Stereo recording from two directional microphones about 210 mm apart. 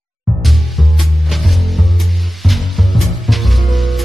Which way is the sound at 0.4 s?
Centre (ahead or behind).